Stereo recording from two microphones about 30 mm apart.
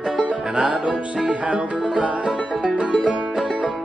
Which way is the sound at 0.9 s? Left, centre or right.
Right.